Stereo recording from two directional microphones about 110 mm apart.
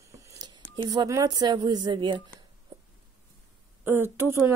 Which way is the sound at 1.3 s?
40° right (ahead or behind).